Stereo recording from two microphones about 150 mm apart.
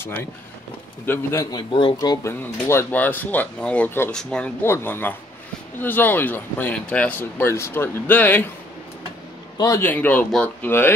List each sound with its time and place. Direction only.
0.0 s speech: 15° left (ahead or behind)
4.6 s speech: 15° left (ahead or behind)
9.6 s speech: 15° left (ahead or behind)